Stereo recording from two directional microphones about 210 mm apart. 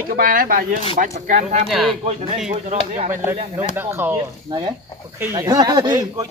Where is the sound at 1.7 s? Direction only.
Centre (ahead or behind).